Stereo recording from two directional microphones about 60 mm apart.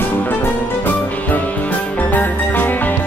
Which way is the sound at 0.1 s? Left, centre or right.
Left.